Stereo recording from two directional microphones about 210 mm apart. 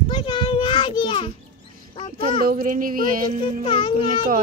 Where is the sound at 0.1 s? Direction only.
20° left (ahead or behind).